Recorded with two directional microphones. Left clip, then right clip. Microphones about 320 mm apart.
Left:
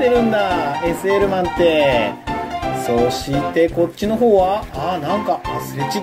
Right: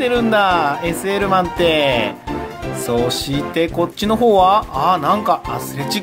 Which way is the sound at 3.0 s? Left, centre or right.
Right.